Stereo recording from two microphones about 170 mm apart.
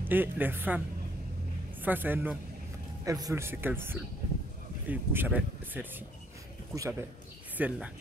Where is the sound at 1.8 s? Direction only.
10° right (ahead or behind).